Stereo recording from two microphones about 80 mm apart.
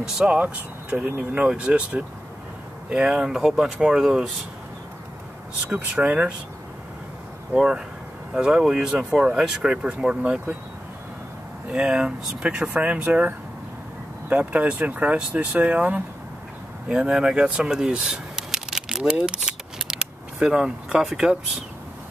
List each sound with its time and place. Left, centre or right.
0.0 s speech: centre
5.6 s speech: centre
7.5 s speech: centre
11.7 s speech: centre
14.3 s speech: centre